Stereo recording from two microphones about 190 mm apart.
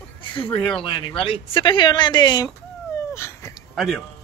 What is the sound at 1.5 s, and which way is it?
Speech, 25° left (ahead or behind).